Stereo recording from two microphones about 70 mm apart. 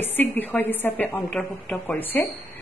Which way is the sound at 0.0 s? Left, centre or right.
Left.